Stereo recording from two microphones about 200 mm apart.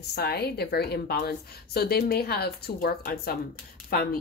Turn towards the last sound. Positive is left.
turn(degrees=50)  # may be behind; listen again after turning